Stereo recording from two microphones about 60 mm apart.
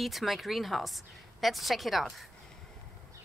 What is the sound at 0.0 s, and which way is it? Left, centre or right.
A woman's voice, centre.